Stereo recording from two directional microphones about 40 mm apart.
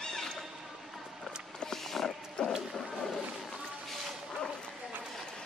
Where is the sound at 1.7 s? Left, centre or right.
Centre.